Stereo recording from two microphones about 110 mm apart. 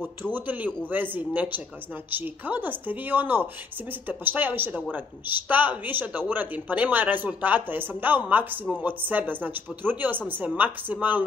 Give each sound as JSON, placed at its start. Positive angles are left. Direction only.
{"t": 0.2, "sound": "speech", "side_deg": -15}